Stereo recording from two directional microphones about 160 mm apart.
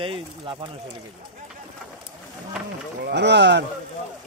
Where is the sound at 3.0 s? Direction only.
90° right.